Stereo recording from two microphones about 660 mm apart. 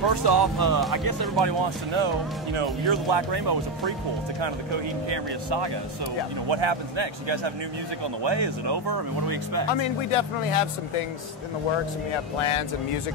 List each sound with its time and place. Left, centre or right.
0.0 s speech: right
5.1 s speech: right
9.7 s speech: left
11.7 s speech: left